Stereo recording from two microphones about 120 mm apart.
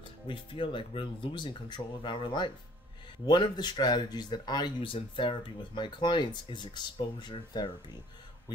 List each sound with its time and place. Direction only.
0.3 s speech: 45° left (ahead or behind)